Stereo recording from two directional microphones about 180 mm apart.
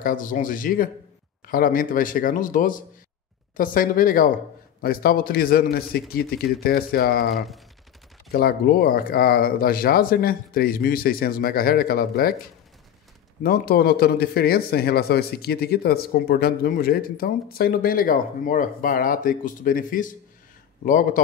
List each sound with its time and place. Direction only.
0.0 s a man's voice: 50° left (ahead or behind)
7.2 s speech: centre (ahead or behind)
8.3 s a man's voice: 55° left (ahead or behind)
13.4 s a man's voice: 55° left (ahead or behind)